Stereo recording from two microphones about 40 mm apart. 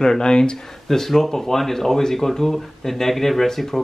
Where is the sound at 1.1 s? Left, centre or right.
Centre.